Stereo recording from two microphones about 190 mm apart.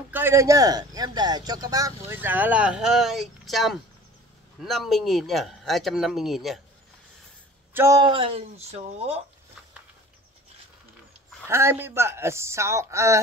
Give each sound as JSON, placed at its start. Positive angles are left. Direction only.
{"t": 0.1, "sound": "speech", "side_deg": -15}
{"t": 7.7, "sound": "speech", "side_deg": -15}
{"t": 11.4, "sound": "speech", "side_deg": -15}